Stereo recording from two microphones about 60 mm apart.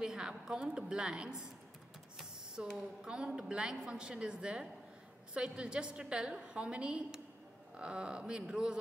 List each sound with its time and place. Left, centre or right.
0.0 s a woman's voice: centre
2.1 s printer: centre
3.0 s a woman's voice: centre